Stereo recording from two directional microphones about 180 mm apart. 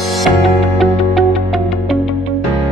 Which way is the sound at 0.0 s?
Centre (ahead or behind).